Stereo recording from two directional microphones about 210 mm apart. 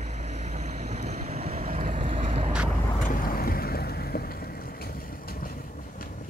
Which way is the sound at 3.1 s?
45° left (ahead or behind).